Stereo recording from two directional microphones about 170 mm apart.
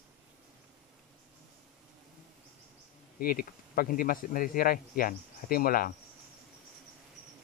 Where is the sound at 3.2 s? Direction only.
60° left (ahead or behind).